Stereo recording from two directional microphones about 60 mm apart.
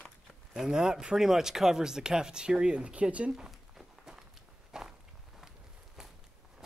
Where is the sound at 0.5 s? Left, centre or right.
Centre.